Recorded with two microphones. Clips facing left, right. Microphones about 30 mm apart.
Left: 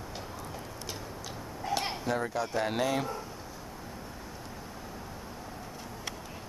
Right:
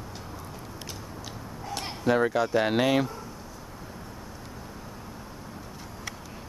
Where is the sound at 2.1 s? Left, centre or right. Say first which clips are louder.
Right 10 dB; right.